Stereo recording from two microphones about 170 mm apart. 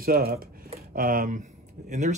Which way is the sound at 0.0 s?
60° right (ahead or behind).